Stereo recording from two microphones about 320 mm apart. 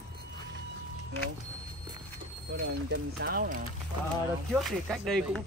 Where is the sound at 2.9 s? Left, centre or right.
Right.